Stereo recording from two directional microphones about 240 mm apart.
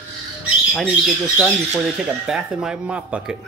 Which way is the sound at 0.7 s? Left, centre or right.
Centre.